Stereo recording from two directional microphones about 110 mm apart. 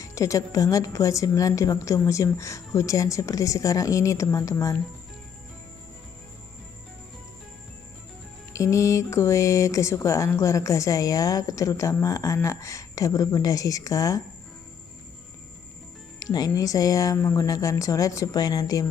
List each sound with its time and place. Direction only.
0.0 s speech: 30° left (ahead or behind)
8.5 s speech: 30° left (ahead or behind)
16.2 s speech: 35° left (ahead or behind)